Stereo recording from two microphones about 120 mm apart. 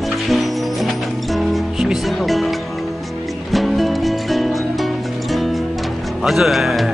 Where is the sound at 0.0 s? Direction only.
Centre (ahead or behind).